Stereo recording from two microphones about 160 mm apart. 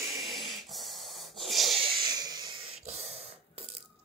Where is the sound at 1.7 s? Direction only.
30° right (ahead or behind).